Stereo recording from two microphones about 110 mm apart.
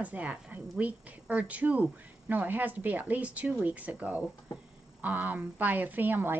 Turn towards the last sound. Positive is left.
turn(degrees=-15)  # may be behind; listen again after turning